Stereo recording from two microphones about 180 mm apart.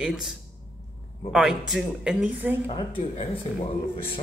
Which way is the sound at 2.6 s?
30° left (ahead or behind).